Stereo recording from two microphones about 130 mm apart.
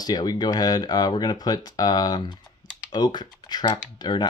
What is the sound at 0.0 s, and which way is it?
Speech, 30° left (ahead or behind).